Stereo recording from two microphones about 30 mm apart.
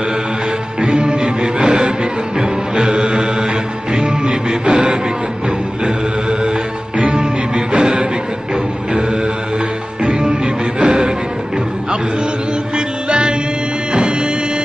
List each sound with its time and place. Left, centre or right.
0.7 s music: right
7.2 s music: right
10.0 s music: right
12.7 s music: right